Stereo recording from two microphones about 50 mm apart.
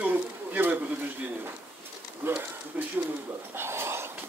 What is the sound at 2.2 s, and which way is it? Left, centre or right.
Speech, right.